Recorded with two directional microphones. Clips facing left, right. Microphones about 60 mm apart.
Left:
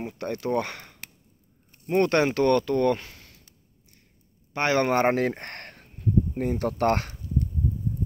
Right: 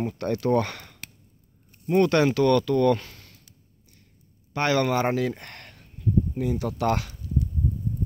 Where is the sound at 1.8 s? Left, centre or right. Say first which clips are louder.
Right 2 dB; left.